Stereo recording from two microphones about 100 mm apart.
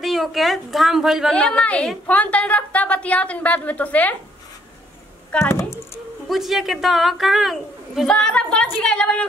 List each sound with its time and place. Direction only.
0.0 s a woman's voice: centre (ahead or behind)
1.3 s a woman's voice: 10° left (ahead or behind)
5.4 s speech: 30° left (ahead or behind)
6.2 s a woman's voice: centre (ahead or behind)
8.1 s a woman's voice: 10° left (ahead or behind)